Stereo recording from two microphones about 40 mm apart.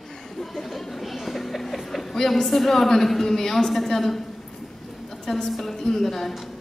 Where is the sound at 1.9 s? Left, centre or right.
Centre.